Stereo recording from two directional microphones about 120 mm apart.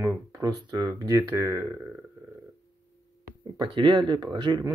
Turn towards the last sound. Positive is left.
turn(degrees=-40)  # may be behind; listen again after turning